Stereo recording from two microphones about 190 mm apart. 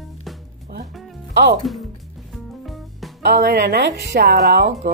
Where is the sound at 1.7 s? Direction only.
Centre (ahead or behind).